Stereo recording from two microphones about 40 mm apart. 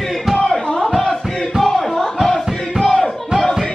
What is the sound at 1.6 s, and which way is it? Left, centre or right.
Crowd, centre.